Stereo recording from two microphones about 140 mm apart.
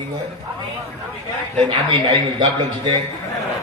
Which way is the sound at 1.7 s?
35° right (ahead or behind).